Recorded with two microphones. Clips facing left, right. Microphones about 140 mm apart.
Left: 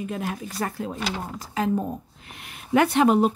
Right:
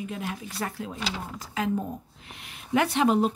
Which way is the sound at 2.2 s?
55° left (ahead or behind).